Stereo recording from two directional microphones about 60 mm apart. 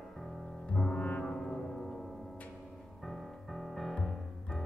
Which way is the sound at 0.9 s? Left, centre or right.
Left.